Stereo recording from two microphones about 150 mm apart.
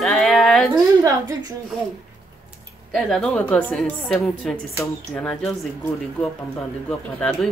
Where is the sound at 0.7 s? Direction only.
25° right (ahead or behind).